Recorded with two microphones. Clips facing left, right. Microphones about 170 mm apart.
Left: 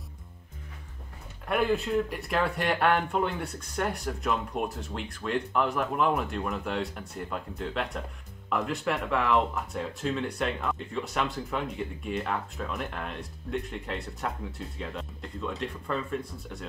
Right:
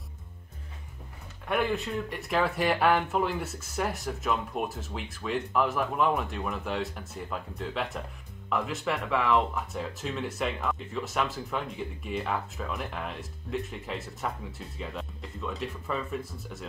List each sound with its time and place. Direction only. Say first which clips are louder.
1.5 s speech: left 3 dB; centre (ahead or behind)